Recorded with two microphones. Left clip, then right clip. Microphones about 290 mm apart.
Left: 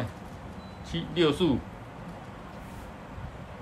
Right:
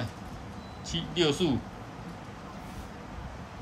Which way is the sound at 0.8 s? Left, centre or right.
Centre.